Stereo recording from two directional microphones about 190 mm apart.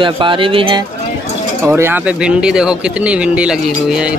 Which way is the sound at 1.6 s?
10° right (ahead or behind).